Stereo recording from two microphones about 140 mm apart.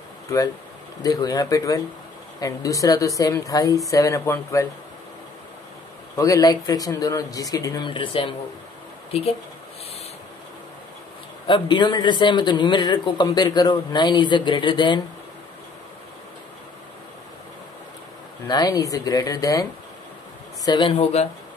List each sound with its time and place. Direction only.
1.0 s speech: 25° left (ahead or behind)
6.1 s speech: 25° left (ahead or behind)
11.4 s a man's voice: 35° left (ahead or behind)
18.5 s speech: 30° left (ahead or behind)
20.6 s a man's voice: 35° left (ahead or behind)
21.0 s speech: 50° left (ahead or behind)